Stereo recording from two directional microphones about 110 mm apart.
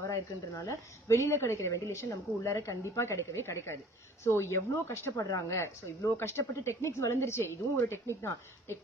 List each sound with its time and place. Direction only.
0.0 s a woman's voice: 30° left (ahead or behind)